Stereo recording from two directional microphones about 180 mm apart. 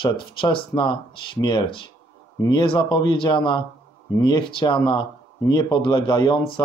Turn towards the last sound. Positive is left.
turn(degrees=25)  # may be behind; listen again after turning